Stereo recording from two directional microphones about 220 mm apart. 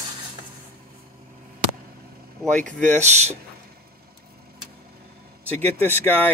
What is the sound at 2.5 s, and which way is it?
Speech, 35° right (ahead or behind).